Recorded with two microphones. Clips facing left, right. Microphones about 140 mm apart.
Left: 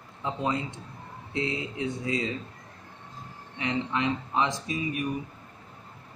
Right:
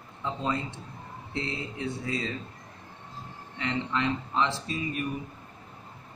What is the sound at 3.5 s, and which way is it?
Speech, 15° left (ahead or behind).